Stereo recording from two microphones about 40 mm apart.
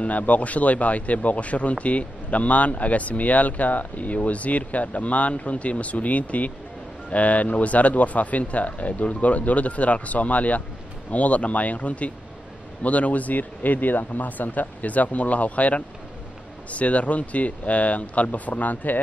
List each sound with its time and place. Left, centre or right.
0.0 s speech: left